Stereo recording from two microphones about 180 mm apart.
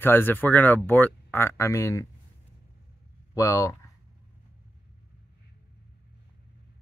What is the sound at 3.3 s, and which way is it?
Speech, 20° left (ahead or behind).